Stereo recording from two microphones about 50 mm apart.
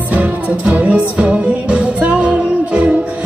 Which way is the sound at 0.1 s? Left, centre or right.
Right.